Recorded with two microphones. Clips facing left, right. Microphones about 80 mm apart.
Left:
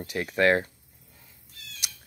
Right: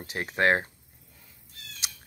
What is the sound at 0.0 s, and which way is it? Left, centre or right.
Speech, right.